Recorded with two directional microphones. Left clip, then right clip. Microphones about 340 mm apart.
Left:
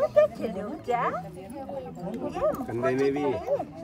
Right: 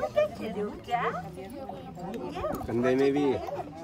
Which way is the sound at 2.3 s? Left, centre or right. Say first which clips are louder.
Left 7 dB; centre.